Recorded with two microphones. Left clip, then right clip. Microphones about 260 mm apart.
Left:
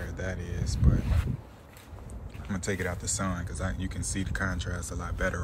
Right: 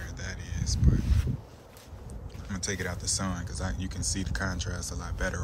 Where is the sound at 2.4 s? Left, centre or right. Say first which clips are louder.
Left 1 dB; centre.